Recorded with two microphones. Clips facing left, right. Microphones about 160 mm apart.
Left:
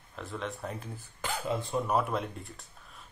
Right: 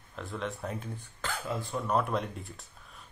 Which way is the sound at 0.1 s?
Centre (ahead or behind).